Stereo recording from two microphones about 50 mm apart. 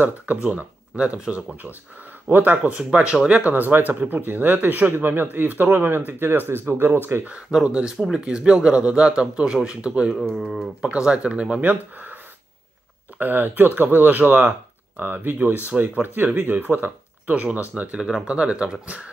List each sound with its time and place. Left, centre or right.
0.0 s speech: right
2.9 s speech: centre; by 7.0 s right
7.6 s speech: centre
10.1 s speech: centre
11.1 s speech: right
11.6 s speech: right
13.2 s speech: right